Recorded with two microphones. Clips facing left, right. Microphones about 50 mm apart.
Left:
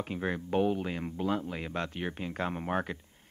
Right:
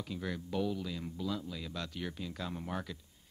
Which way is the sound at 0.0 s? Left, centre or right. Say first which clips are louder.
Left 6 dB; left.